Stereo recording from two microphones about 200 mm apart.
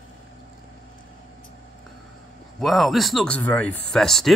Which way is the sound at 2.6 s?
Centre (ahead or behind).